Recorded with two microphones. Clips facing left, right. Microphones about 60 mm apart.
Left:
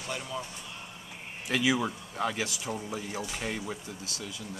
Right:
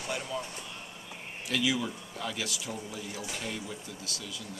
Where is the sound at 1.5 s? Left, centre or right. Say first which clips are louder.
Left 3 dB; left.